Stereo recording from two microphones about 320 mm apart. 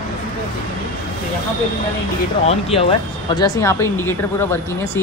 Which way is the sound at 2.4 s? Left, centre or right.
Centre.